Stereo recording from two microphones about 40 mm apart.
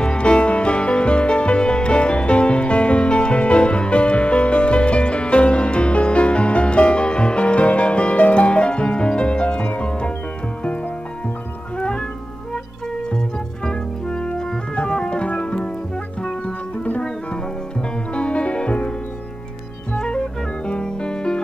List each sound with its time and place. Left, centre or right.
0.0 s music: left
13.7 s music: left
16.4 s music: left
18.1 s music: left
20.0 s music: left